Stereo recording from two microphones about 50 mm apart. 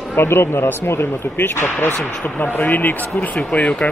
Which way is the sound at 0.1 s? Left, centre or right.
Left.